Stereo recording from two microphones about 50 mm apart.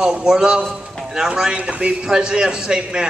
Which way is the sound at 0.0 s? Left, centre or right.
Centre.